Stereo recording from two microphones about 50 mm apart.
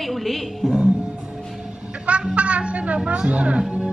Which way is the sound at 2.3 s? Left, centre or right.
Right.